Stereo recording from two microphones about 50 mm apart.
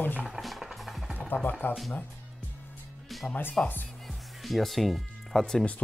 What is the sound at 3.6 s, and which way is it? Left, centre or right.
Speech, left.